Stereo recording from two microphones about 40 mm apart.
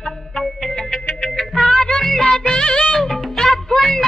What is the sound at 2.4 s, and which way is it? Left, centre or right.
Music, left.